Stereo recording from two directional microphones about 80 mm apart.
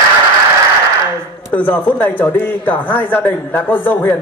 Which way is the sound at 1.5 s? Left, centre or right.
Left.